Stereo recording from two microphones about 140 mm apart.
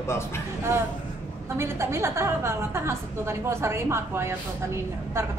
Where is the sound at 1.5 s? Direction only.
20° right (ahead or behind).